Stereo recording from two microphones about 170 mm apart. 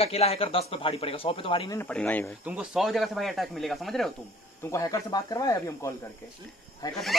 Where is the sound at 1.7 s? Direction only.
10° left (ahead or behind).